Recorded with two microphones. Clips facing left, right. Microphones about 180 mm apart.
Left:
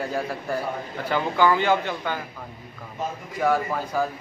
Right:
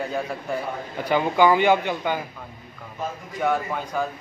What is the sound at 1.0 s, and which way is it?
Speech, 15° right (ahead or behind).